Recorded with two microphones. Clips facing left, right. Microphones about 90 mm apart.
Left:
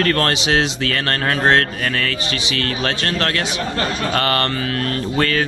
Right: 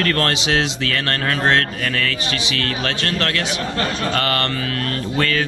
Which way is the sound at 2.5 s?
25° left (ahead or behind).